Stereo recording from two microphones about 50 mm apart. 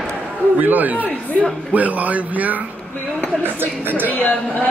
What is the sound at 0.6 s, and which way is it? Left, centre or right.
A man's voice, right.